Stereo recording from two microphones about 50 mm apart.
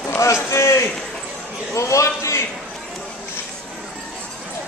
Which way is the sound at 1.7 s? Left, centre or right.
Left.